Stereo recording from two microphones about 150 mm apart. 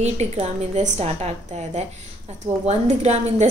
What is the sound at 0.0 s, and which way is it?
A woman's voice, 45° right (ahead or behind).